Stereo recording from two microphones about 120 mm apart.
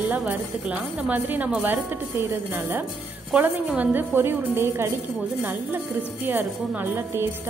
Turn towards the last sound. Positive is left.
turn(degrees=-15)  # may be behind; listen again after turning